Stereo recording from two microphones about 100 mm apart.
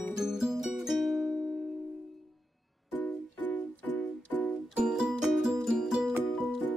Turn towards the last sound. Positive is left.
turn(degrees=-5)  # may be behind; listen again after turning